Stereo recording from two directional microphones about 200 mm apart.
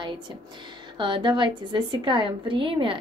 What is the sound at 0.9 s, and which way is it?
A woman's voice, 25° right (ahead or behind).